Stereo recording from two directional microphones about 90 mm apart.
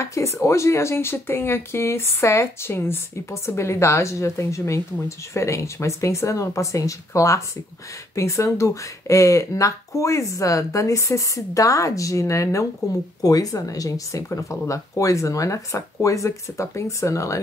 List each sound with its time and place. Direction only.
0.0 s speech: 30° left (ahead or behind)